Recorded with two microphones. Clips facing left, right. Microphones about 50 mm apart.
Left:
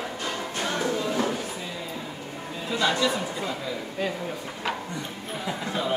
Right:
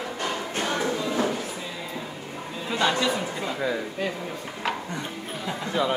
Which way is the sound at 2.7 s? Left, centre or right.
Right.